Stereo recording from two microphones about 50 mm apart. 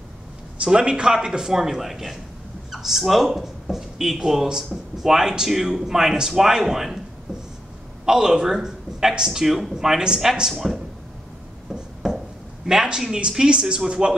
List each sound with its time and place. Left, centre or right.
0.6 s speech: centre
8.0 s a man's voice: centre
11.7 s a sound: centre
12.6 s speech: centre